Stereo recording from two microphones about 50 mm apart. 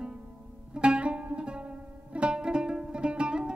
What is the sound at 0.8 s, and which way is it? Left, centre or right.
Music, right.